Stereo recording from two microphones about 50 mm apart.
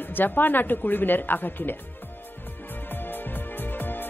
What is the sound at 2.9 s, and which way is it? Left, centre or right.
Music, left.